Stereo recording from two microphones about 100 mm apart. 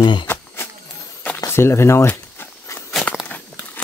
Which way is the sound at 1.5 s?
25° left (ahead or behind).